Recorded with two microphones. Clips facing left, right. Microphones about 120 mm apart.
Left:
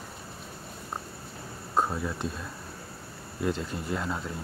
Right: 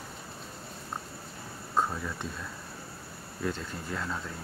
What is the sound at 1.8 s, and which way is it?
Speech, 15° left (ahead or behind).